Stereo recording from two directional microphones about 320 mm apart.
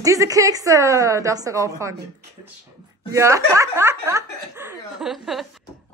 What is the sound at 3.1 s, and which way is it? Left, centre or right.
A woman's voice, centre.